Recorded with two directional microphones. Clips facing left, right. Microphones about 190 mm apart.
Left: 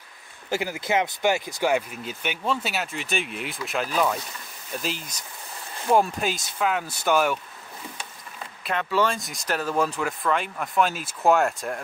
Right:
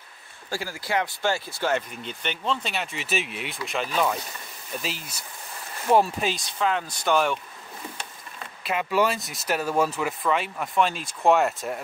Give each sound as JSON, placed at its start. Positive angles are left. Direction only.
{"t": 0.5, "sound": "speech", "side_deg": 20}
{"t": 8.6, "sound": "speech", "side_deg": -10}